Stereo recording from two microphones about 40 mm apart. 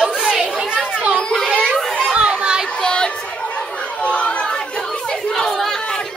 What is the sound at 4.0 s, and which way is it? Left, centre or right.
Chatter, left.